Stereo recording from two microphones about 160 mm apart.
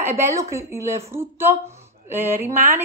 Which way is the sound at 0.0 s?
15° right (ahead or behind).